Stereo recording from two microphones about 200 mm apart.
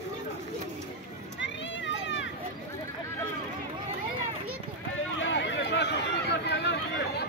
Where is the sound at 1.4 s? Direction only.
65° left (ahead or behind).